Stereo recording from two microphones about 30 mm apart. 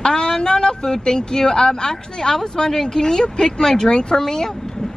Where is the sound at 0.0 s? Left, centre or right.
Left.